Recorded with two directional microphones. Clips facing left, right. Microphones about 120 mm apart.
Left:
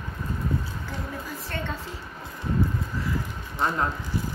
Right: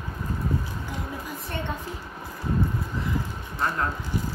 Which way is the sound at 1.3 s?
15° right (ahead or behind).